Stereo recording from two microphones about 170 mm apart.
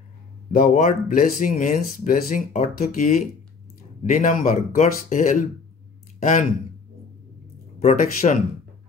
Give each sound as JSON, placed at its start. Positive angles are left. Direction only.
{"t": 0.5, "sound": "speech", "side_deg": 50}
{"t": 7.8, "sound": "speech", "side_deg": 50}